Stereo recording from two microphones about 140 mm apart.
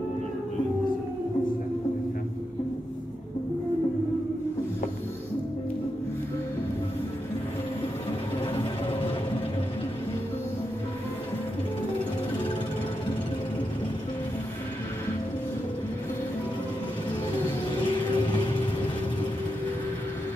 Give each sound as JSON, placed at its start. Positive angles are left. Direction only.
{"t": 17.8, "sound": "vehicle", "side_deg": 35}